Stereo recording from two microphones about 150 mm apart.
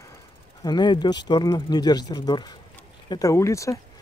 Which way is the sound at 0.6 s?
30° left (ahead or behind).